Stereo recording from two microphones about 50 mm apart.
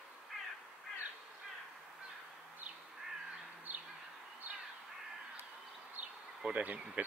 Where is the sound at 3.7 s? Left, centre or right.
Right.